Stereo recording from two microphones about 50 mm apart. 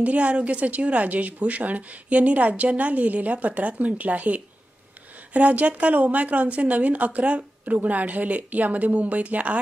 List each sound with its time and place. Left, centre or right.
0.0 s a woman's voice: right